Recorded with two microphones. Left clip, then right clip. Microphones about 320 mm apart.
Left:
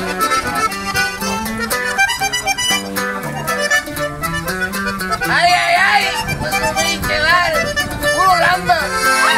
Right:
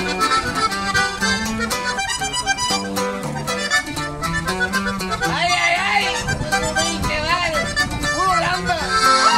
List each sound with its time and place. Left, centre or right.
5.3 s music: left
7.1 s music: left
8.9 s music: centre